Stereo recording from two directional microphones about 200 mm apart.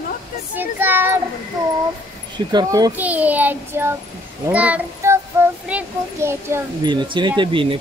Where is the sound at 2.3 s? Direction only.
20° right (ahead or behind).